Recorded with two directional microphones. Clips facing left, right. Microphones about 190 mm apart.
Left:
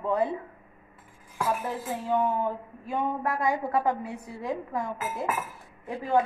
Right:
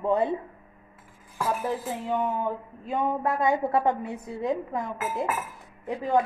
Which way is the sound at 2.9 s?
25° right (ahead or behind).